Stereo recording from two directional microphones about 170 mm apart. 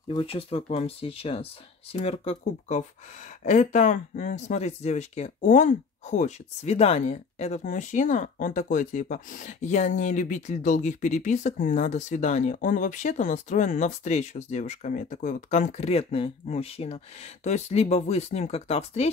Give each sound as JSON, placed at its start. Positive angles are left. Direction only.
{"t": 0.1, "sound": "speech", "side_deg": 30}